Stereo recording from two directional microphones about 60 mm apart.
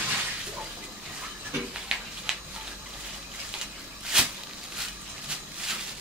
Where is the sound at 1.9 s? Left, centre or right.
Centre.